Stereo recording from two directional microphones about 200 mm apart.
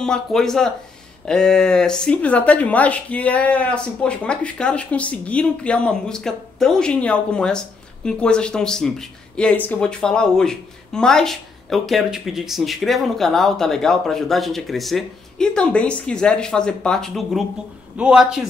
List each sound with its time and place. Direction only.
0.0 s speech: 5° left (ahead or behind)